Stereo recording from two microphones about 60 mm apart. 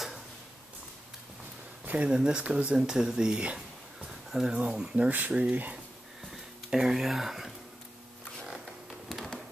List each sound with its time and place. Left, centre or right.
1.9 s speech: right
2.1 s speech: centre
6.3 s a sound: centre